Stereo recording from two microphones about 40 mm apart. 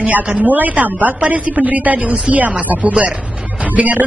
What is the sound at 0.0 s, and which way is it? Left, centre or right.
Speech, right.